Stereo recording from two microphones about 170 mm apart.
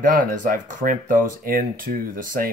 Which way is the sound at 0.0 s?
50° right (ahead or behind).